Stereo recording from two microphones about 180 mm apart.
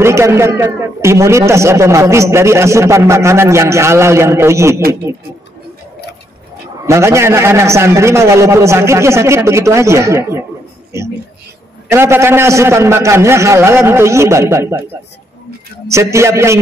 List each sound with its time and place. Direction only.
0.0 s a man's voice: 15° right (ahead or behind)
6.9 s a man's voice: 15° right (ahead or behind)
11.9 s a man's voice: 15° right (ahead or behind)